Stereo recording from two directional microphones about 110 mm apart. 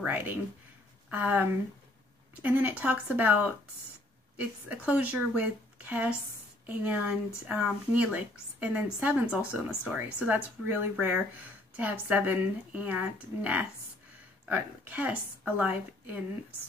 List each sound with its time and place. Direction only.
0.0 s speech: 15° right (ahead or behind)
2.4 s speech: 15° right (ahead or behind)
4.4 s speech: 15° right (ahead or behind)